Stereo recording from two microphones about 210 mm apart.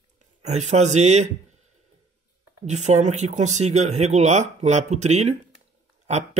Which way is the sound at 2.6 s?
35° right (ahead or behind).